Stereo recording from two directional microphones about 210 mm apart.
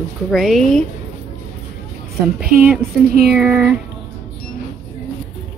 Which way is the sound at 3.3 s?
5° right (ahead or behind).